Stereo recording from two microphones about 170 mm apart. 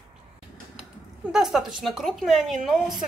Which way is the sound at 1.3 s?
Centre (ahead or behind).